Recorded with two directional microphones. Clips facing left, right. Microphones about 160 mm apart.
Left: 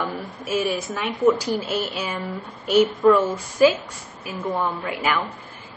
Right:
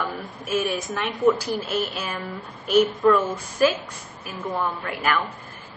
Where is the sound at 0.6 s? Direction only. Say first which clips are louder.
Left 1 dB; 5° left (ahead or behind).